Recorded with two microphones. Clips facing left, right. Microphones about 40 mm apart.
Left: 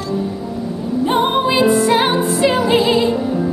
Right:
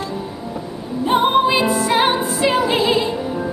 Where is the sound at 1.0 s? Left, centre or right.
Centre.